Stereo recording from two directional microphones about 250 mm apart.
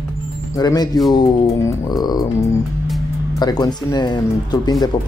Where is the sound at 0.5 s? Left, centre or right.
Centre.